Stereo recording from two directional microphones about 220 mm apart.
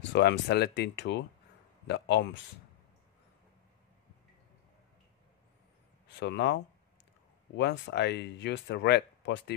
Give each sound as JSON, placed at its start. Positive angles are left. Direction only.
{"t": 0.1, "sound": "speech", "side_deg": 50}
{"t": 6.1, "sound": "speech", "side_deg": 50}